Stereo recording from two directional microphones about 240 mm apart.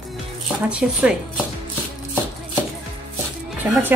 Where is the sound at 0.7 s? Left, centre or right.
Centre.